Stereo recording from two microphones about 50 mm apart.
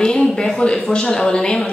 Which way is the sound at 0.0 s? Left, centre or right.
Centre.